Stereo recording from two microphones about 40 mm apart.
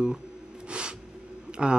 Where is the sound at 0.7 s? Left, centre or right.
Right.